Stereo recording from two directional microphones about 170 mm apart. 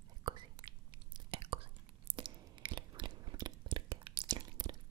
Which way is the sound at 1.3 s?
30° right (ahead or behind).